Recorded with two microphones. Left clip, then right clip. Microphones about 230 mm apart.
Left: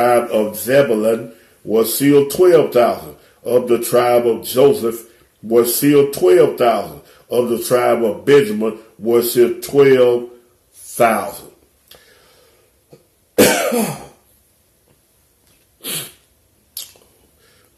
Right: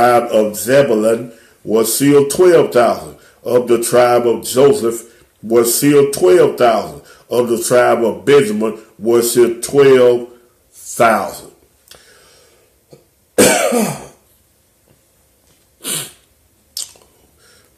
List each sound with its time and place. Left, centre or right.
0.3 s speech: centre
13.6 s speech: centre